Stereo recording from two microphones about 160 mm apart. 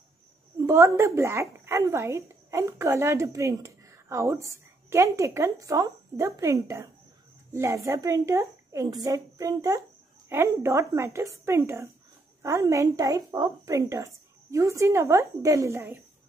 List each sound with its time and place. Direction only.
0.7 s a woman's voice: 15° right (ahead or behind)